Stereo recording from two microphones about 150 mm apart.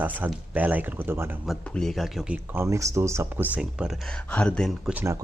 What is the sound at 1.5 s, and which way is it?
Speech, centre (ahead or behind).